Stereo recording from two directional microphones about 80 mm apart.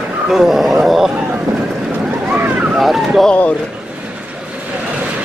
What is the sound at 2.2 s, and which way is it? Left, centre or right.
Boat, right.